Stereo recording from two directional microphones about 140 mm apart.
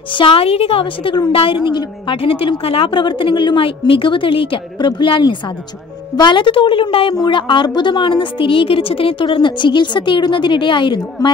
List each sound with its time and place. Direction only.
0.1 s a woman's voice: 40° left (ahead or behind)